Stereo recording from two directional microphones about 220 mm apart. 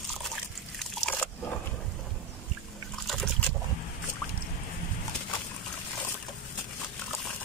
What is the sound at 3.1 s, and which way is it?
Boat, centre (ahead or behind).